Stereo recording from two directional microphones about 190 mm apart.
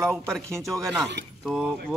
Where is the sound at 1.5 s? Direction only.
Centre (ahead or behind).